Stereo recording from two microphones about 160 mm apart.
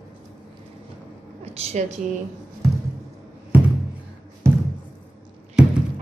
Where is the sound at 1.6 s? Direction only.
40° right (ahead or behind).